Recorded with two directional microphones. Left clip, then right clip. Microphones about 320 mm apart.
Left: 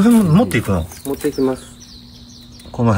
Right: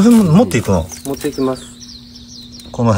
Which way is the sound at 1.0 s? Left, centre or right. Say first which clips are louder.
Even; right.